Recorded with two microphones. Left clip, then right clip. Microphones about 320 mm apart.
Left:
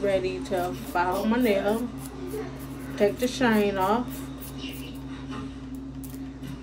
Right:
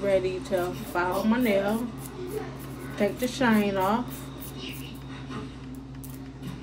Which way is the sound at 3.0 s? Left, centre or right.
Centre.